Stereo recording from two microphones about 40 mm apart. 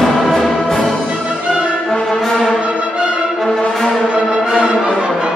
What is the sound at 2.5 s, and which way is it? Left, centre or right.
Music, right.